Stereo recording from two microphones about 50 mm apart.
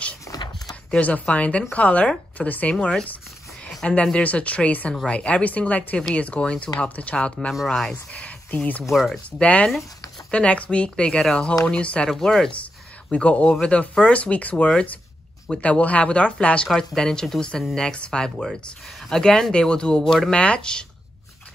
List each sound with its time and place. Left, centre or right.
1.0 s speech: left
2.7 s speech: centre
7.5 s speech: centre
7.9 s a sound: left
8.9 s speech: centre
9.4 s speech: left
12.2 s speech: centre
13.1 s speech: left
18.4 s speech: centre
20.3 s speech: left